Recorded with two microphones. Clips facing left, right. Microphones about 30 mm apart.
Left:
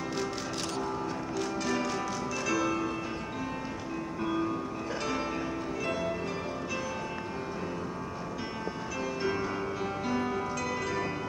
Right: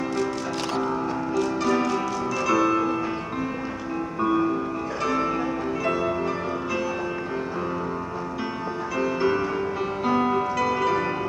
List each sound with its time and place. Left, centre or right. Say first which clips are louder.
1.3 s music: right 9 dB; centre
4.2 s music: right 9 dB; centre
8.9 s music: right 9 dB; right